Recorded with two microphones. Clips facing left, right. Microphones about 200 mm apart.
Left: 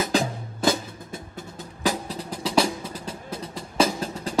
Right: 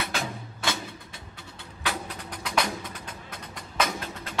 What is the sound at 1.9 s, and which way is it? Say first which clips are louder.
Music: left 7 dB; 35° left (ahead or behind).